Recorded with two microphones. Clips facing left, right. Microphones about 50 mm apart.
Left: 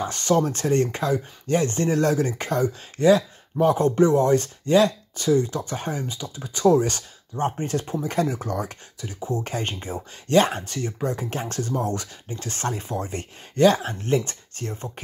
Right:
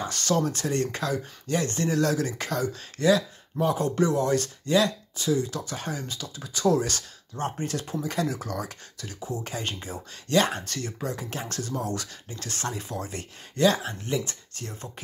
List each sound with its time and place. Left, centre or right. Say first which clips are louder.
0.0 s speech: left 4 dB; left
10.6 s speech: left 5 dB; left
11.1 s speech: left 4 dB; left